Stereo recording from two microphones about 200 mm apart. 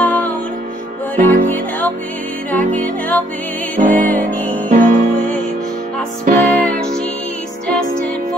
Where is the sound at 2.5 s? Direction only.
10° left (ahead or behind).